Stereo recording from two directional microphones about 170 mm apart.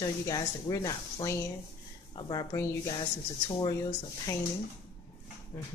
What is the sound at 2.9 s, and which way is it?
Speech, 30° left (ahead or behind).